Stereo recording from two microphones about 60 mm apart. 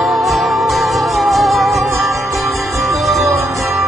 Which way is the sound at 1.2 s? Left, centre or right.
Centre.